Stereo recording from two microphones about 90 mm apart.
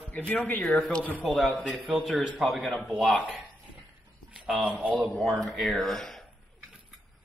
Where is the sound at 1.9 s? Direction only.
5° right (ahead or behind).